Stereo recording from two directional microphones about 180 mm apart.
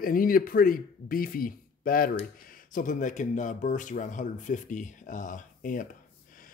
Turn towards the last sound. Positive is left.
turn(degrees=45)  # may be behind; listen again after turning